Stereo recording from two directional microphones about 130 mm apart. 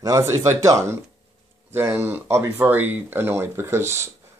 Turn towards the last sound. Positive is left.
turn(degrees=-20)  # may be behind; listen again after turning